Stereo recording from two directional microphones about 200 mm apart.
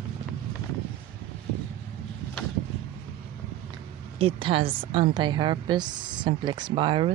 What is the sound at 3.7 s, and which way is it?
A woman's voice, 25° right (ahead or behind).